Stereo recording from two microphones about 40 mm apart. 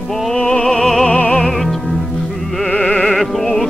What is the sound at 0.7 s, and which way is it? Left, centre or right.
Music, centre.